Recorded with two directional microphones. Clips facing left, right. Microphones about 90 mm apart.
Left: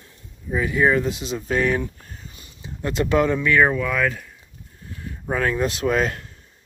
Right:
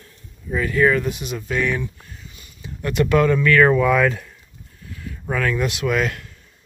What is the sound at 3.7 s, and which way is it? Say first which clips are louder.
Speech: right 6 dB; 5° right (ahead or behind).